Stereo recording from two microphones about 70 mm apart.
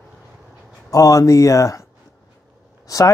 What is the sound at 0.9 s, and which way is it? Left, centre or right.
Speech, left.